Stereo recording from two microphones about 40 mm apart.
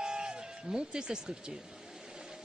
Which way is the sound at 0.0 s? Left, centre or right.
Centre.